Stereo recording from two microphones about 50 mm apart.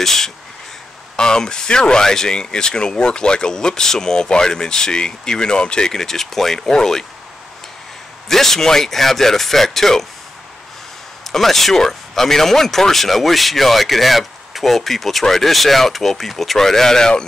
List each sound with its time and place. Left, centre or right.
0.0 s speech: centre
8.3 s speech: centre
11.2 s speech: centre